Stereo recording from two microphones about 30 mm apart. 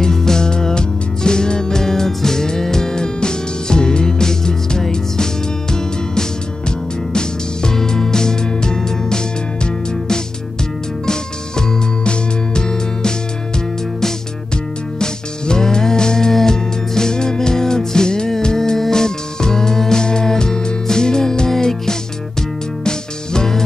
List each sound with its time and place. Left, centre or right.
0.0 s music: centre
12.0 s music: left
15.0 s music: left